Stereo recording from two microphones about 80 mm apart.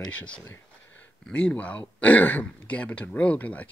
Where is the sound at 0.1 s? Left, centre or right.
Centre.